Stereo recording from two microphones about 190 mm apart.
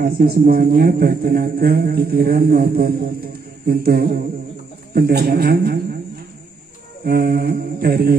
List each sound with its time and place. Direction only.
0.0 s a man's voice: 50° right (ahead or behind)
7.1 s a man's voice: 50° right (ahead or behind)